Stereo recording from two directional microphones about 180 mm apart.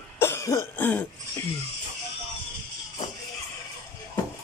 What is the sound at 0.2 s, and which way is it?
Cough, 15° left (ahead or behind).